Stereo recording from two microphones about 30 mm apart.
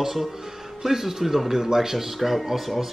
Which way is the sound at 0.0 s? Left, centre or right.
Centre.